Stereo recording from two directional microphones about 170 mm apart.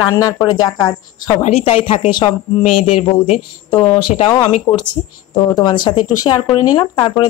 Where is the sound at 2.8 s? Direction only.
40° left (ahead or behind).